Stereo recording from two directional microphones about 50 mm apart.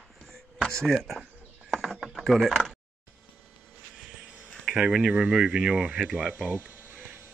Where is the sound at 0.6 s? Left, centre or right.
Centre.